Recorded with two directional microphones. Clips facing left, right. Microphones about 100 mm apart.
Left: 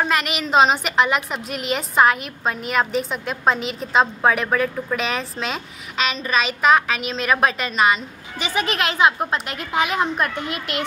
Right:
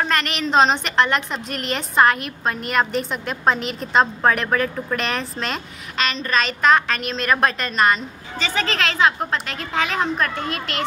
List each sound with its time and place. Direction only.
0.0 s a woman's voice: 5° left (ahead or behind)
8.4 s a woman's voice: 15° left (ahead or behind)